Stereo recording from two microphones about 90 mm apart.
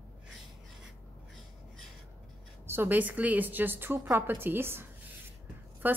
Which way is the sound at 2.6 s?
25° right (ahead or behind).